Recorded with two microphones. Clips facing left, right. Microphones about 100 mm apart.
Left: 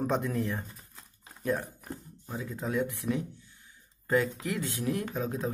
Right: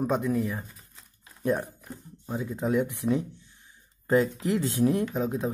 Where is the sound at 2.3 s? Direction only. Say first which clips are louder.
Right 6 dB; 25° right (ahead or behind).